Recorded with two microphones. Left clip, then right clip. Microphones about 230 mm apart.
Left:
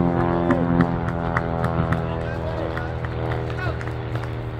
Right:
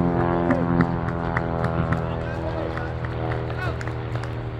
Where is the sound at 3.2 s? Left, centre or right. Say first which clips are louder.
Left 1 dB; centre.